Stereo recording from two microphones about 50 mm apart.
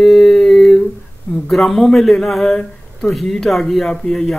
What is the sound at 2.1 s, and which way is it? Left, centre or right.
Speech, centre.